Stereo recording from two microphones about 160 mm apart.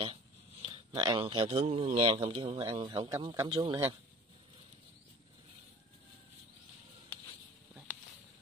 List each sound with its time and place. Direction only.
0.0 s speech: 30° right (ahead or behind)
2.6 s speech: 25° right (ahead or behind)